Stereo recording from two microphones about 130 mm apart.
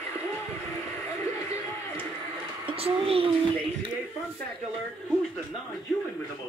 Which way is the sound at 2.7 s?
50° right (ahead or behind).